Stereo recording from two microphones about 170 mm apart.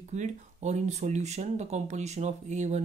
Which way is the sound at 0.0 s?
45° right (ahead or behind).